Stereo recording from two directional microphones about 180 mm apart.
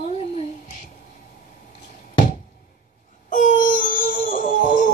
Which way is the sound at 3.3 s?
45° left (ahead or behind).